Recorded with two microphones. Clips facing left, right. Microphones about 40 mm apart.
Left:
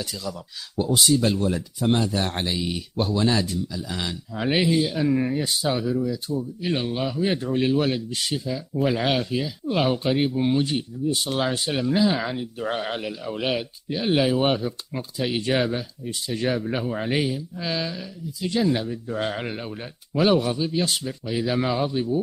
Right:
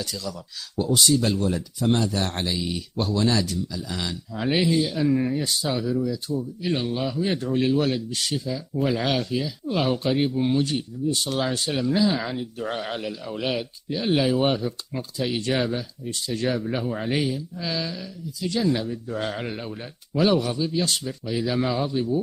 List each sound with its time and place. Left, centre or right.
0.0 s speech: centre